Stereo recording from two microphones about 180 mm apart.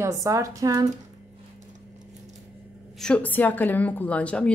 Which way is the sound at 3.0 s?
5° left (ahead or behind).